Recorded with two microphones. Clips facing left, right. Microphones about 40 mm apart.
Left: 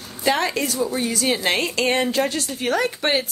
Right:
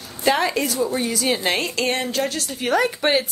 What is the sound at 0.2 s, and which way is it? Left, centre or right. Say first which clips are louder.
Speech: right 1 dB; centre.